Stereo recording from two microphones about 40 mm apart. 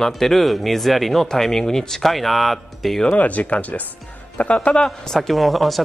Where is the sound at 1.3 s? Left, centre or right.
Centre.